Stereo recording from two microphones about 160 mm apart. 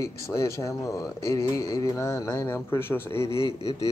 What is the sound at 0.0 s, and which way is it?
Speech, 20° left (ahead or behind).